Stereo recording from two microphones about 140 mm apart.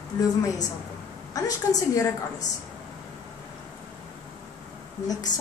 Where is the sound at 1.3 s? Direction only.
25° left (ahead or behind).